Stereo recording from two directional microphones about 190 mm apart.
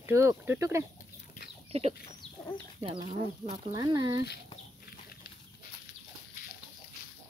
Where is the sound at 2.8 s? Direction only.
25° right (ahead or behind).